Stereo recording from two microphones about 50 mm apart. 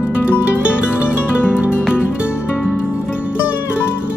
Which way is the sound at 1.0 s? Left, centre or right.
Left.